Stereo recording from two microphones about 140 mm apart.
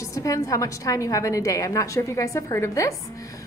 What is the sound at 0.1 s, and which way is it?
Speech, 25° left (ahead or behind).